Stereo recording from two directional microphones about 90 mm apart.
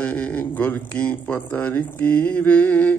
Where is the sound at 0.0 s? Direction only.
15° left (ahead or behind).